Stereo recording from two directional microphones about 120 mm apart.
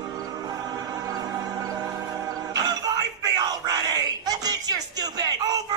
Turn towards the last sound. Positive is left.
turn(degrees=-30)  # may be behind; listen again after turning